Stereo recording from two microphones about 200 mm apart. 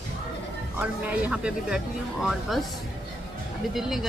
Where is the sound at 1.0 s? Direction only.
5° right (ahead or behind).